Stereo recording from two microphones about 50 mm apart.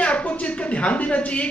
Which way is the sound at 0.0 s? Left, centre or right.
Left.